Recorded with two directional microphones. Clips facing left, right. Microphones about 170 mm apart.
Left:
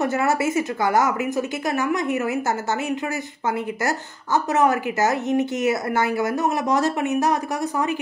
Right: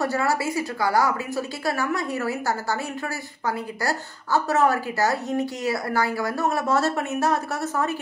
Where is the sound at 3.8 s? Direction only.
20° left (ahead or behind).